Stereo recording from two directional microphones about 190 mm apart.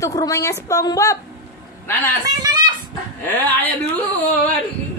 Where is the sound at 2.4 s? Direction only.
20° right (ahead or behind).